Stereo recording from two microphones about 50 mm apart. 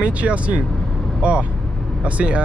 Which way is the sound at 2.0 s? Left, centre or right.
Right.